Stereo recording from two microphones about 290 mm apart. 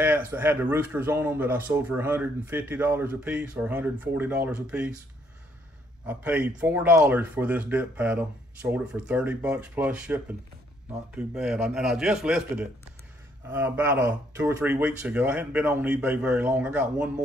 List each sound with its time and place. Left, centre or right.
0.0 s speech: centre
6.0 s speech: centre